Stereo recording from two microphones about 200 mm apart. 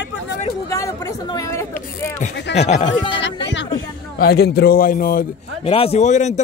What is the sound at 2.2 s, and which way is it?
Speech, 35° left (ahead or behind).